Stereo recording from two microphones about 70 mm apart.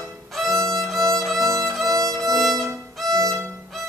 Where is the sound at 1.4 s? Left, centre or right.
Right.